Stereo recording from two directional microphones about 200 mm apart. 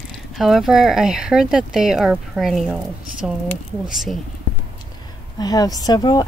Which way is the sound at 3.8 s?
Centre (ahead or behind).